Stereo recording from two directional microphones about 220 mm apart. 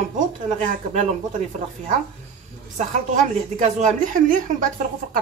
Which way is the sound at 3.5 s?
35° right (ahead or behind).